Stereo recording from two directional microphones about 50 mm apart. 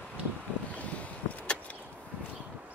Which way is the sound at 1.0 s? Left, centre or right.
Left.